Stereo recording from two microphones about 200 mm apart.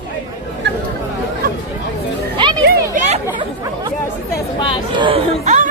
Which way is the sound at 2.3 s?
25° right (ahead or behind).